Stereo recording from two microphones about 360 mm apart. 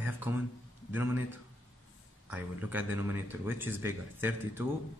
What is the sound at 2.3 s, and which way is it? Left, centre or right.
A man's voice, centre.